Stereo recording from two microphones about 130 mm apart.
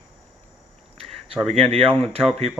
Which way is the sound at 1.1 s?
Centre (ahead or behind).